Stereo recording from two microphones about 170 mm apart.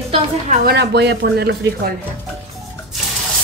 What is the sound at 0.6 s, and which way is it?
Speech, 75° right (ahead or behind).